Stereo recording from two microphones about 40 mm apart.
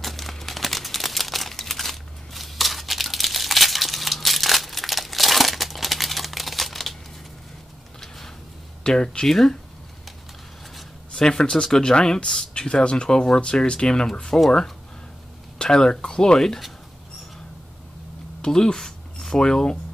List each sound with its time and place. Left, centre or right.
0.0 s crumpling: centre
8.8 s speech: centre
11.1 s speech: centre
14.3 s speech: left
15.6 s speech: left
18.4 s speech: centre